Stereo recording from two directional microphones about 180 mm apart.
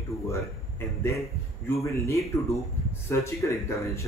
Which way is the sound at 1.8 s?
15° left (ahead or behind).